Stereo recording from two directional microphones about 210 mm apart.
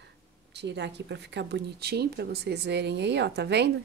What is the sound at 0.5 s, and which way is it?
Speech, 55° right (ahead or behind).